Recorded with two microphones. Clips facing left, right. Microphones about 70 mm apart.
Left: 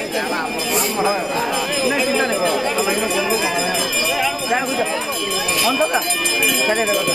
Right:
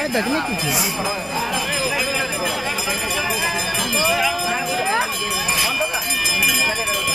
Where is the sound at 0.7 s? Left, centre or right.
Centre.